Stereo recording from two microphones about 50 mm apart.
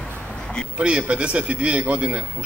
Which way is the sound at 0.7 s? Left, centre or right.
Right.